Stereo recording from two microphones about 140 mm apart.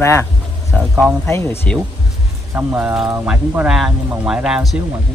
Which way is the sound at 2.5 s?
15° right (ahead or behind).